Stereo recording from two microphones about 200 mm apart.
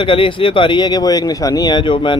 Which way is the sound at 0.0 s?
25° left (ahead or behind).